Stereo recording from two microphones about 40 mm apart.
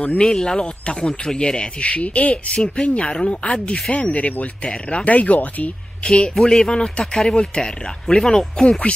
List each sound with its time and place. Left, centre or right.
0.2 s speech: centre
1.9 s speech: left
4.6 s speech: left
5.0 s speech: left
6.0 s speech: left